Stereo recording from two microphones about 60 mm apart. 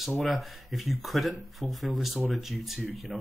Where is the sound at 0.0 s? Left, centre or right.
Centre.